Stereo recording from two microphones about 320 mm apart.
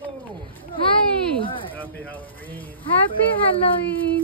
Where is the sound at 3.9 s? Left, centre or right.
Centre.